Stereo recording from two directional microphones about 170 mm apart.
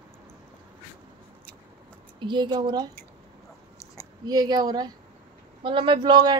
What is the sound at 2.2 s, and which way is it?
Speech, 30° right (ahead or behind).